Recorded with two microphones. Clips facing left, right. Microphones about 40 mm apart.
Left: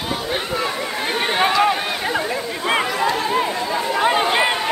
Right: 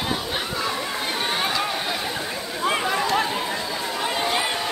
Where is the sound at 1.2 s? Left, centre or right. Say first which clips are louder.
Left 8 dB; left.